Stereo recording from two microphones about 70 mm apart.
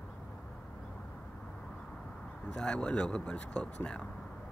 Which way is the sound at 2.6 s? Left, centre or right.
Centre.